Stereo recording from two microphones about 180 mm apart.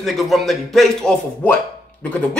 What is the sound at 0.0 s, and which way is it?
Speech, centre (ahead or behind).